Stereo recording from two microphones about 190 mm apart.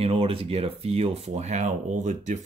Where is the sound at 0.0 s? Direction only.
30° right (ahead or behind).